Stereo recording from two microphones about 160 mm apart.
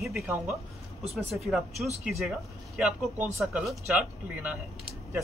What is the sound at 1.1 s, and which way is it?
Speech, centre (ahead or behind).